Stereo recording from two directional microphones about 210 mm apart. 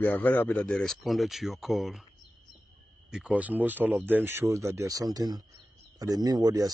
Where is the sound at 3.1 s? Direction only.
5° right (ahead or behind).